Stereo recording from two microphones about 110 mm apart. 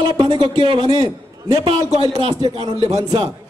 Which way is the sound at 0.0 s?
45° right (ahead or behind).